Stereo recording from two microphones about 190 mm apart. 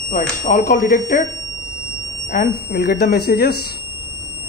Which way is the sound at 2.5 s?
55° left (ahead or behind).